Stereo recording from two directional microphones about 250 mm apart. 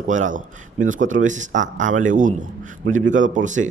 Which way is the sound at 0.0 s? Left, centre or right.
Right.